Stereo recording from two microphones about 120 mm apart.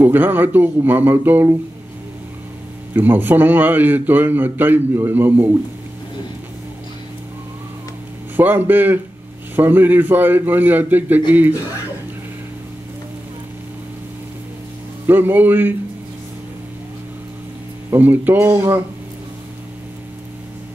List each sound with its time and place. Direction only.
0.0 s speech: 15° right (ahead or behind)
2.9 s speech: 15° right (ahead or behind)
8.4 s speech: 15° right (ahead or behind)
15.0 s speech: 15° right (ahead or behind)
17.9 s speech: 15° right (ahead or behind)